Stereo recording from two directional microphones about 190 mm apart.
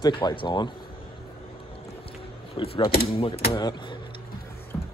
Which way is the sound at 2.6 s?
30° left (ahead or behind).